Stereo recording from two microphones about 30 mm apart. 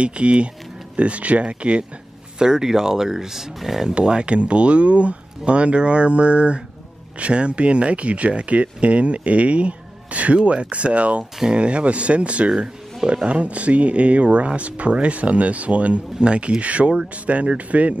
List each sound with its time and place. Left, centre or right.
0.0 s speech: right
2.3 s speech: right
3.9 s speech: right
12.4 s speech: right
13.3 s speech: right